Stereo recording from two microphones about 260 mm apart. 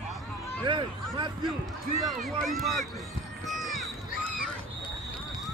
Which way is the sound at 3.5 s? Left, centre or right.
Centre.